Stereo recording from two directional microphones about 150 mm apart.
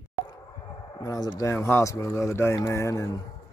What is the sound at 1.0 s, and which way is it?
Speech, 25° left (ahead or behind).